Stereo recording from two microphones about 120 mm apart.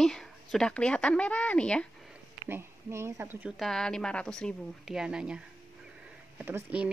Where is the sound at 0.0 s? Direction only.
Centre (ahead or behind).